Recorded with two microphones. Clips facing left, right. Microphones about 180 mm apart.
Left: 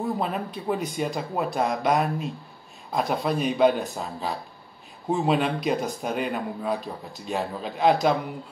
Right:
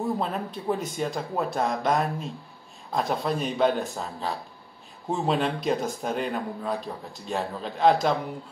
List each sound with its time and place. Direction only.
0.2 s speech: 10° left (ahead or behind)
3.3 s a man's voice: 5° left (ahead or behind)